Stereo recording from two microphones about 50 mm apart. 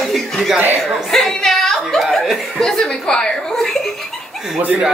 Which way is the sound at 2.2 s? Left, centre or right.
Centre.